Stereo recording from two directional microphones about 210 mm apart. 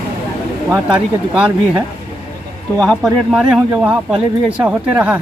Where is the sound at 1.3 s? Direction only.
5° right (ahead or behind).